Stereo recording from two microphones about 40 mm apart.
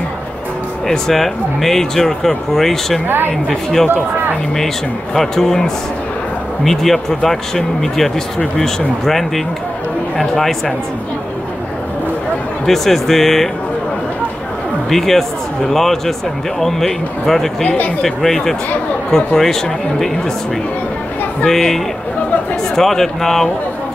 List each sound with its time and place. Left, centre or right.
0.8 s speech: centre
5.1 s speech: centre
12.6 s speech: centre
14.9 s speech: centre
17.6 s speech: left
18.0 s speech: centre
21.5 s speech: centre